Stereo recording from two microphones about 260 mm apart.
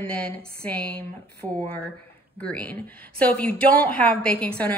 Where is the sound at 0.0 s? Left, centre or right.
Centre.